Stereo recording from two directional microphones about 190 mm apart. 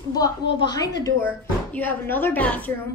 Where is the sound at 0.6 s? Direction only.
20° left (ahead or behind).